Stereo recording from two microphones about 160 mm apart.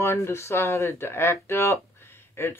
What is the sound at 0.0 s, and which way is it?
Speech, 15° left (ahead or behind).